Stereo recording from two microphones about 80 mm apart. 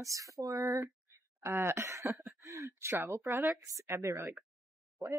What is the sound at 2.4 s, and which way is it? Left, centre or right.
Speech, right.